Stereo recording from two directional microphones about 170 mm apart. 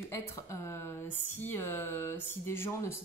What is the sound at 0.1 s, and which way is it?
Speech, 15° left (ahead or behind).